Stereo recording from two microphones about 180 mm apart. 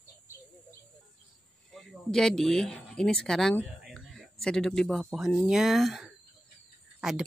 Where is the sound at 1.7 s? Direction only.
Centre (ahead or behind).